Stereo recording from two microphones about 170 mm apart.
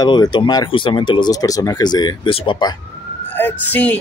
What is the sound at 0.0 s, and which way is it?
Speech, 25° left (ahead or behind).